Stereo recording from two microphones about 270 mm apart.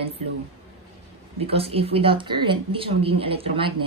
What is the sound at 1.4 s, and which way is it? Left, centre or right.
A woman's voice, right.